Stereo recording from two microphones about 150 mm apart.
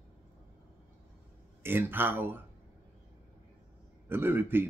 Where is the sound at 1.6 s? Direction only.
15° right (ahead or behind).